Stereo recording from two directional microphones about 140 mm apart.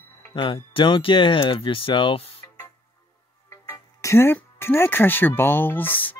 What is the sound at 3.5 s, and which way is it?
Speech, 20° left (ahead or behind).